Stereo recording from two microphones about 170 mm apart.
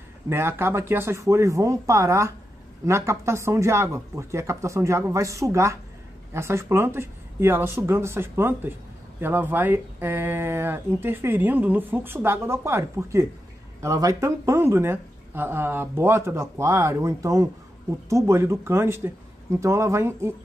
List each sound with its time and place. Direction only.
0.3 s speech: 15° right (ahead or behind)